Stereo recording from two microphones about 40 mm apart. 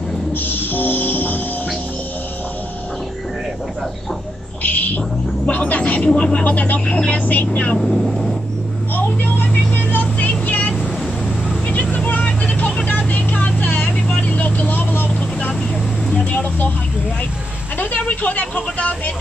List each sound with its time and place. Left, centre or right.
0.3 s music: left
4.6 s bird: left
5.5 s a woman's voice: left
6.1 s speech: left
6.4 s speech: left
7.8 s speech: centre
8.9 s vehicle: left
11.7 s vehicle: left
16.3 s a sound: left
17.7 s speech: left